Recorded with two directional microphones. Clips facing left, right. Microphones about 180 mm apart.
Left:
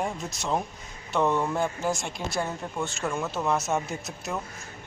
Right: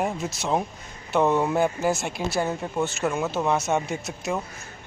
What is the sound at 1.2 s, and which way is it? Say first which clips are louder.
Speech: right 3 dB; 15° right (ahead or behind).